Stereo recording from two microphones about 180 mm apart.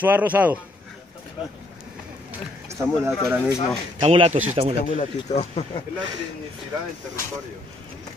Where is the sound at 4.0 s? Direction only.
30° right (ahead or behind).